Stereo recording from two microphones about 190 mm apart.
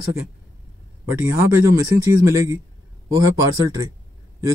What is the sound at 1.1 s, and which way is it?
Speech, 10° right (ahead or behind).